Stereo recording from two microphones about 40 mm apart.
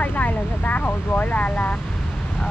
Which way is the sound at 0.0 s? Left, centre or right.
Left.